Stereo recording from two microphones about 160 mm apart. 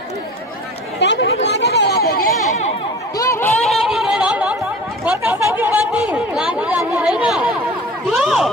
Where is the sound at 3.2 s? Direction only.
15° left (ahead or behind).